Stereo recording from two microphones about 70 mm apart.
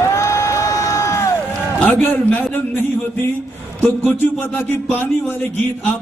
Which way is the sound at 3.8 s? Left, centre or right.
Left.